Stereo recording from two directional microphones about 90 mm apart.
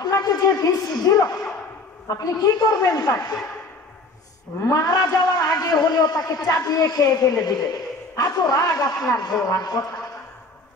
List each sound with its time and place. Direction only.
0.2 s a woman's voice: 50° left (ahead or behind)
4.6 s a man's voice: 40° left (ahead or behind)